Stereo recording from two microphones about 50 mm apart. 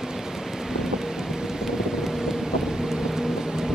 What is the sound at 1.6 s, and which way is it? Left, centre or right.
Vehicle, centre.